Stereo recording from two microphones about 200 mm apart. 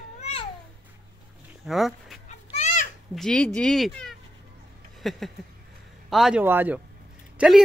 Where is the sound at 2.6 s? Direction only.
35° left (ahead or behind).